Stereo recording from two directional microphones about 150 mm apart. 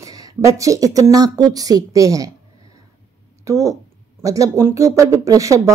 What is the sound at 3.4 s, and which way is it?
Speech, 20° right (ahead or behind).